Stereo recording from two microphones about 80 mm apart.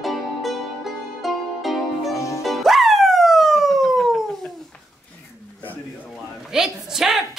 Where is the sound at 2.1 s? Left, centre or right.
Left.